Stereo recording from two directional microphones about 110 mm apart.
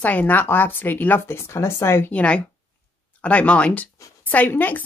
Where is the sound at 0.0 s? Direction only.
15° left (ahead or behind).